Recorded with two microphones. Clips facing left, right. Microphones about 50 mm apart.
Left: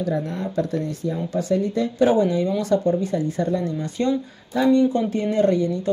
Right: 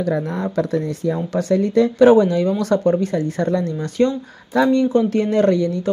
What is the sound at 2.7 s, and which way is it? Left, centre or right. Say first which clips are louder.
Speech: right 3 dB; right.